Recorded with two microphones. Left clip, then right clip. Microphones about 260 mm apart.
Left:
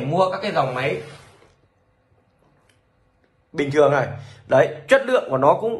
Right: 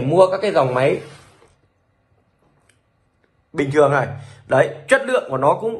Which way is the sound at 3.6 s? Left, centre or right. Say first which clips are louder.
Right 1 dB; centre.